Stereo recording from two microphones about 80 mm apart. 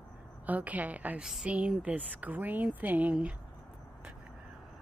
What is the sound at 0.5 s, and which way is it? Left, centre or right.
A woman's voice, centre.